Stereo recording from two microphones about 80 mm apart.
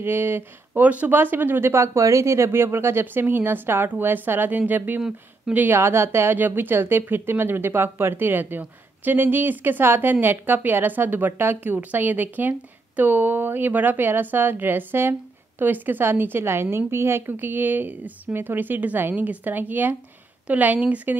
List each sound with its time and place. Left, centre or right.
0.0 s a woman's voice: right